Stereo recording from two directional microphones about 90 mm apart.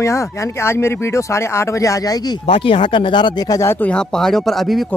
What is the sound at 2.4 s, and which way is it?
Speech, 90° left.